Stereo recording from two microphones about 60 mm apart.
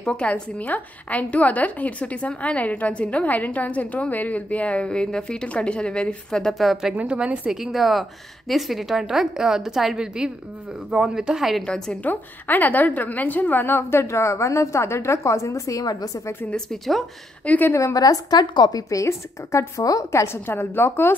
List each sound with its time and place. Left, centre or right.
0.0 s a woman's voice: centre
7.6 s a woman's voice: centre
11.6 s a woman's voice: centre
12.0 s a woman's voice: left
16.5 s a woman's voice: centre
17.4 s a woman's voice: left
17.9 s a woman's voice: left
20.5 s a woman's voice: left